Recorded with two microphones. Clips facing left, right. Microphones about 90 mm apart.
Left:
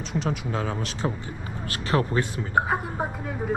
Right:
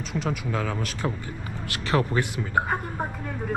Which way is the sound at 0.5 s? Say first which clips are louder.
Even; 25° left (ahead or behind).